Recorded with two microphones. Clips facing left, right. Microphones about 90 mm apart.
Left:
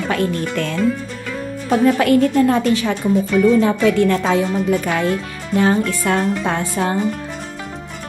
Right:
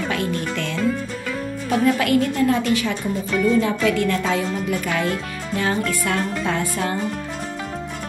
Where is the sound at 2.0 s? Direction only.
35° left (ahead or behind).